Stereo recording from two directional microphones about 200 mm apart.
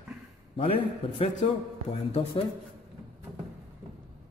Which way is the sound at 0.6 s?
30° left (ahead or behind).